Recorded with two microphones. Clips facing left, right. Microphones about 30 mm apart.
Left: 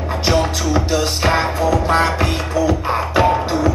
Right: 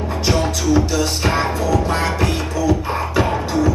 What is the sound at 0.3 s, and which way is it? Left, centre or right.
Music, centre.